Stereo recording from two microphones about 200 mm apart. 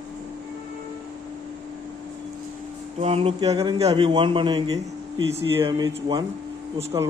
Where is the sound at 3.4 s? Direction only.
20° right (ahead or behind).